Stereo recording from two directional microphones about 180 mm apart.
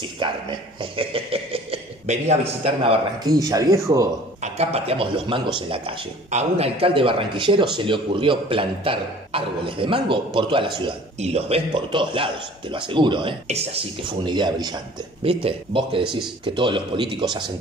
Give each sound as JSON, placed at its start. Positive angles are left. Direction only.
{"t": 0.0, "sound": "speech", "side_deg": -25}
{"t": 3.3, "sound": "speech", "side_deg": -20}
{"t": 4.4, "sound": "speech", "side_deg": -35}
{"t": 16.0, "sound": "speech", "side_deg": -5}
{"t": 16.4, "sound": "speech", "side_deg": -25}